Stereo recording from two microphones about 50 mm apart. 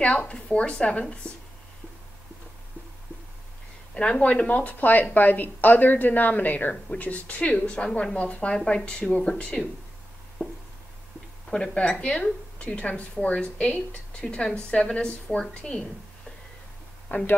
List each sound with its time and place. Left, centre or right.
0.3 s a woman's voice: left
3.9 s a woman's voice: left
10.4 s a sound: right
11.5 s a woman's voice: centre
17.1 s a woman's voice: left